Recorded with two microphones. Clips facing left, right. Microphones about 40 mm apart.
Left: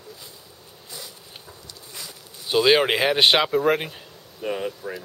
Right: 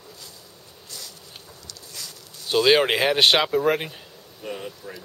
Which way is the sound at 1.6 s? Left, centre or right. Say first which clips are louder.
Right 1 dB; centre.